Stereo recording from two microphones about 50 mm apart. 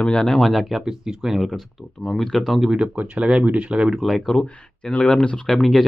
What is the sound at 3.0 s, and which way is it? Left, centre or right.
Speech, right.